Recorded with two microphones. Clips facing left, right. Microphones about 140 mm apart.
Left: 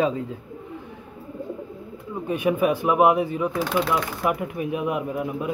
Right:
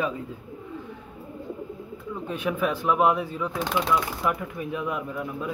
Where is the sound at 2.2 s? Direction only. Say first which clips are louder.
Left 6 dB; 10° left (ahead or behind).